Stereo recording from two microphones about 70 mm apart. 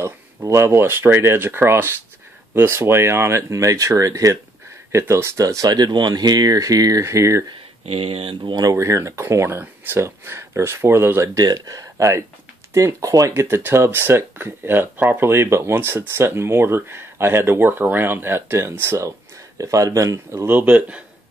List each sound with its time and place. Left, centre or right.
0.0 s speech: right
4.9 s speech: right
5.4 s speech: right
8.7 s speech: right
11.3 s speech: right
13.3 s speech: right
20.4 s speech: right